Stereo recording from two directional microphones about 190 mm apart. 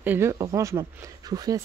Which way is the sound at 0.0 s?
10° right (ahead or behind).